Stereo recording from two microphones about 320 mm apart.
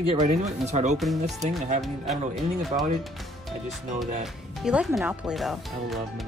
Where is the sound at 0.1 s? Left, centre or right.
Right.